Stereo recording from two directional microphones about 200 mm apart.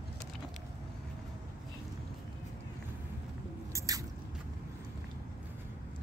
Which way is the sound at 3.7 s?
15° right (ahead or behind).